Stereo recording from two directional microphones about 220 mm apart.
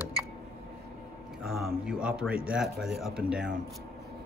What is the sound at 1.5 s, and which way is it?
Speech, centre (ahead or behind).